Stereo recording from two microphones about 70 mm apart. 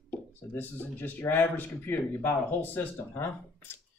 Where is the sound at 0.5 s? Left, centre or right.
Left.